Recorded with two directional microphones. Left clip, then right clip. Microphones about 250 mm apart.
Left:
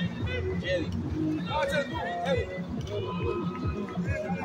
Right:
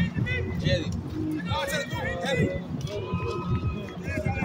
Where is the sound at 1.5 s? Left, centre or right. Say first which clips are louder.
Left 1 dB; right.